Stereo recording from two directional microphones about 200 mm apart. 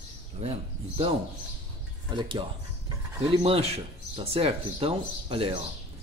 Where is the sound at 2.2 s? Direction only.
25° right (ahead or behind).